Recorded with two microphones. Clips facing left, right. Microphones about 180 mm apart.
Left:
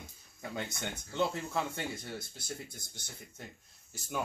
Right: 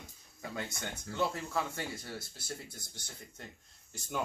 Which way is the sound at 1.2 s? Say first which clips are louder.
Left 1 dB; 20° left (ahead or behind).